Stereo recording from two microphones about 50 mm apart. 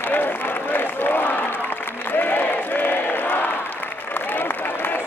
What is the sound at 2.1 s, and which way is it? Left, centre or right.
Crowd, left.